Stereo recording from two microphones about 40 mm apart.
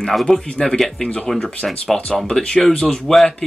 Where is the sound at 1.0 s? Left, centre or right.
Left.